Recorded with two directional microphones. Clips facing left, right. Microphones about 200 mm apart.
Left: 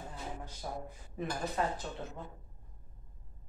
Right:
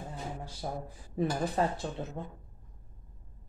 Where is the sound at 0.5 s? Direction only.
35° right (ahead or behind).